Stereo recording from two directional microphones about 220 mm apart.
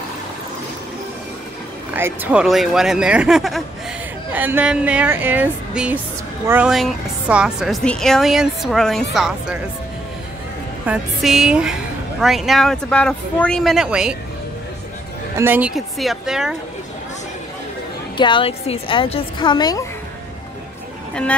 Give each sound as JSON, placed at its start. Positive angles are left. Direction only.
{"t": 2.0, "sound": "a woman's voice", "side_deg": -10}
{"t": 10.9, "sound": "a woman's voice", "side_deg": 0}
{"t": 15.3, "sound": "a woman's voice", "side_deg": -10}
{"t": 18.1, "sound": "a woman's voice", "side_deg": 20}
{"t": 21.1, "sound": "speech", "side_deg": 5}